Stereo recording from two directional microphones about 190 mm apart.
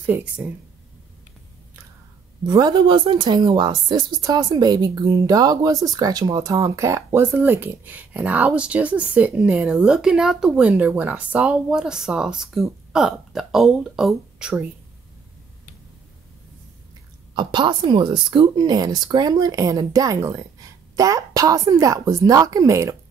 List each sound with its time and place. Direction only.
0.0 s speech: 10° right (ahead or behind)
2.4 s speech: 20° right (ahead or behind); by 14.6 s 5° right (ahead or behind)
17.4 s speech: 25° right (ahead or behind)